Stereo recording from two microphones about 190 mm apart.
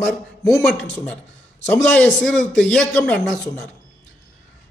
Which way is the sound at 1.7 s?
5° left (ahead or behind).